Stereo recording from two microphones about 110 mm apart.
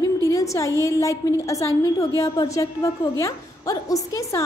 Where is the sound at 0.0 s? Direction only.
30° left (ahead or behind).